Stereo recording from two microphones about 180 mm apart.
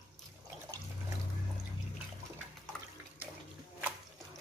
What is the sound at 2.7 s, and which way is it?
Water, centre (ahead or behind).